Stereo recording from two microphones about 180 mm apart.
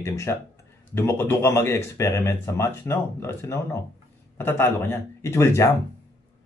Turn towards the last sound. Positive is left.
turn(degrees=15)  # may be behind; listen again after turning